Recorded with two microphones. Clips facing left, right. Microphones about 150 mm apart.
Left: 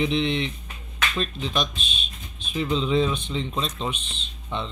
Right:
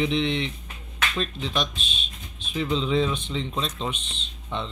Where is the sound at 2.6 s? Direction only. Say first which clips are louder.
Left 1 dB; 5° left (ahead or behind).